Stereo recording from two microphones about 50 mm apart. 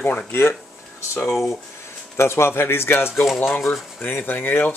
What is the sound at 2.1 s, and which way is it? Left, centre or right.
Speech, left.